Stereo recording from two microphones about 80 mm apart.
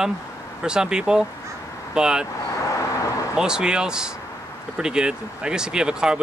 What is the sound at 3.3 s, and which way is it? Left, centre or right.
Speech, centre.